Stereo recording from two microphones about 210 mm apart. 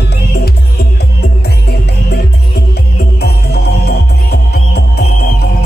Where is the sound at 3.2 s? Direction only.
50° left (ahead or behind).